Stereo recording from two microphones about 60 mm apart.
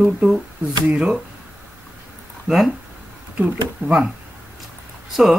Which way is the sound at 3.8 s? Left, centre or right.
Right.